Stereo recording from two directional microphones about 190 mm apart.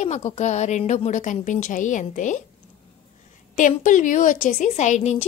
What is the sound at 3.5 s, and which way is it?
A woman's voice, 40° left (ahead or behind).